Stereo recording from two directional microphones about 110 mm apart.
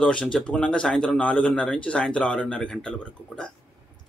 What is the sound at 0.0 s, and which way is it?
Speech, 10° left (ahead or behind).